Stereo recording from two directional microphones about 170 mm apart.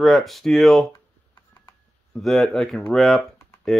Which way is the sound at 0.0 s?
Centre (ahead or behind).